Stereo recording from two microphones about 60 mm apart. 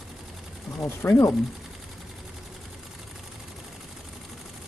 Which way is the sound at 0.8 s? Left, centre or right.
Left.